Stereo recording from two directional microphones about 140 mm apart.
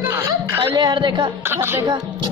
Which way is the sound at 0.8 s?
35° right (ahead or behind).